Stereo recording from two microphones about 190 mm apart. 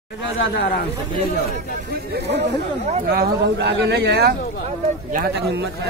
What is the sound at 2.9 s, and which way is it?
Speech, 50° right (ahead or behind).